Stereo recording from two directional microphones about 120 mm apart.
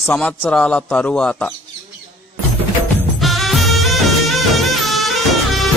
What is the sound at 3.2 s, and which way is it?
Music, centre (ahead or behind).